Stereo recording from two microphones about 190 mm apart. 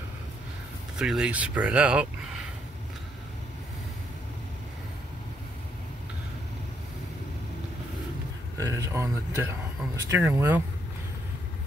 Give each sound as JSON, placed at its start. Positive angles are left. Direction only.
{"t": 0.9, "sound": "speech", "side_deg": -5}
{"t": 8.5, "sound": "speech", "side_deg": -15}